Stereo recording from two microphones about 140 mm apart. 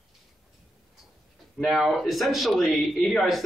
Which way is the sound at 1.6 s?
Centre (ahead or behind).